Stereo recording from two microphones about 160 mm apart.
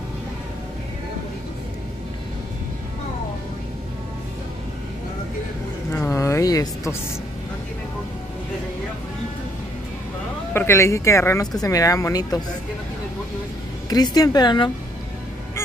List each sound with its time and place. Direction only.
5.9 s a sound: 15° left (ahead or behind)
10.5 s speech: 15° left (ahead or behind)
13.8 s speech: 25° left (ahead or behind)